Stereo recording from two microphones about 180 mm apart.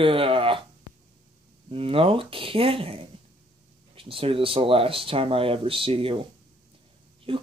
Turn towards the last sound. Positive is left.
turn(degrees=-30)  # may be behind; listen again after turning